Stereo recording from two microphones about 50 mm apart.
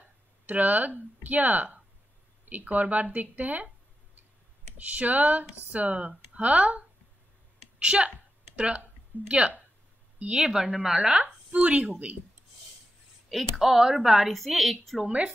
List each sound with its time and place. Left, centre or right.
0.5 s speech: right
4.7 s a woman's voice: right
9.1 s speech: right
10.1 s a woman's voice: right
10.4 s a woman's voice: centre
13.3 s speech: centre
14.3 s a woman's voice: centre
15.0 s a woman's voice: right